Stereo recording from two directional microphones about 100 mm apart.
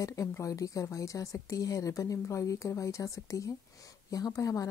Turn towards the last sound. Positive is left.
turn(degrees=35)  # may be behind; listen again after turning